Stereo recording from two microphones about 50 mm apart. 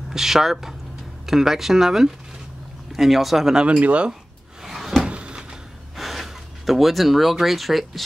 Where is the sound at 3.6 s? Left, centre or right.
Right.